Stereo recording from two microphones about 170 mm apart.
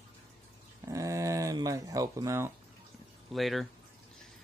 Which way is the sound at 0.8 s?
20° right (ahead or behind).